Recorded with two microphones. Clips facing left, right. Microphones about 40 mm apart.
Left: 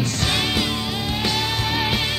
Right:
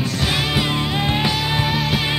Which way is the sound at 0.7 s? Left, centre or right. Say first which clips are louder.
Right 4 dB; right.